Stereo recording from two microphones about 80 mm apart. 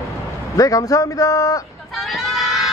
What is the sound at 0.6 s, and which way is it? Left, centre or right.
A man's voice, left.